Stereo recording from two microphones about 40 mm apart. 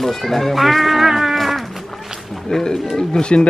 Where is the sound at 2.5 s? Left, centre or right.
Centre.